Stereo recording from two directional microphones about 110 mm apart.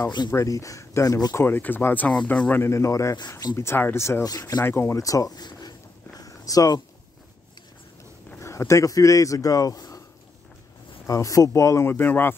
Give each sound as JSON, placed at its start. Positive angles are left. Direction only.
{"t": 0.3, "sound": "speech", "side_deg": 25}
{"t": 4.6, "sound": "a sound", "side_deg": 25}
{"t": 8.4, "sound": "speech", "side_deg": 25}
{"t": 11.1, "sound": "speech", "side_deg": 30}